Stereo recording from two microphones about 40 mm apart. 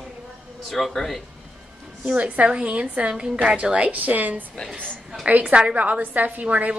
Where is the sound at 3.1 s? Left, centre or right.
Centre.